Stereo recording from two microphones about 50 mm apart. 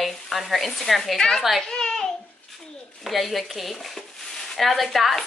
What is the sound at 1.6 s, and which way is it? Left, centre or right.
Babbling, centre.